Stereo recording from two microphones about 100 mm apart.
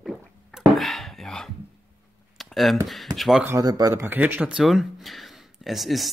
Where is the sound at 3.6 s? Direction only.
40° right (ahead or behind).